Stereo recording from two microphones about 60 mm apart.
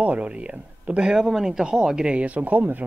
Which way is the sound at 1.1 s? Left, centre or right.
Centre.